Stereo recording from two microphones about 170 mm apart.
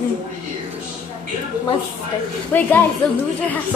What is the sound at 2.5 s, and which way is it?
Speech, 10° left (ahead or behind).